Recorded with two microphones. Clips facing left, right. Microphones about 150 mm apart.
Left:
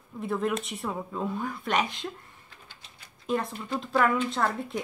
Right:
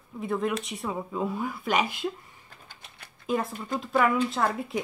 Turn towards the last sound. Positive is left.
turn(degrees=-5)  # may be behind; listen again after turning